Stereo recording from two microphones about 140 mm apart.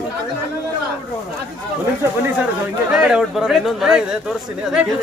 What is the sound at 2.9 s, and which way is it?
Speech, 5° right (ahead or behind).